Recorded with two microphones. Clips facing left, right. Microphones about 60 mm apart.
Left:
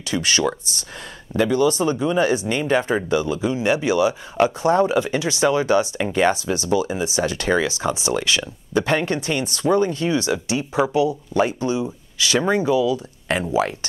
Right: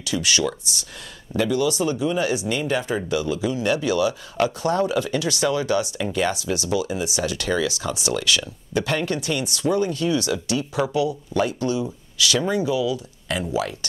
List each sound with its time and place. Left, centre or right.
0.0 s speech: left